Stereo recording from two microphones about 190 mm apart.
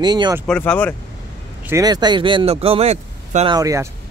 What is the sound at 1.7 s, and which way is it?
Speech, 20° right (ahead or behind).